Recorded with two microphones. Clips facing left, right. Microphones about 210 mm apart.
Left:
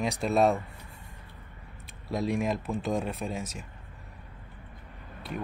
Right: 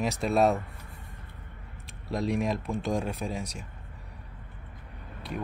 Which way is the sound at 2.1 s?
Centre (ahead or behind).